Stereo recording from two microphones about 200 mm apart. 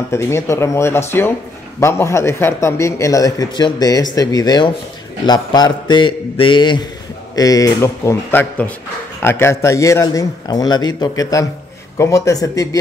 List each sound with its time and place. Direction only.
0.1 s a man's voice: 15° left (ahead or behind)
4.1 s mantra: 20° left (ahead or behind)
7.3 s a man's voice: 20° left (ahead or behind)